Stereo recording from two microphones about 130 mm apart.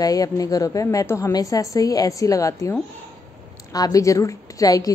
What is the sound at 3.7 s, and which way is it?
A woman's voice, 25° left (ahead or behind).